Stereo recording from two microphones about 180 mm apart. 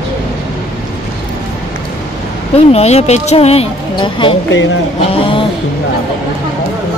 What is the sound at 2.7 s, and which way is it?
A woman's voice, 35° left (ahead or behind).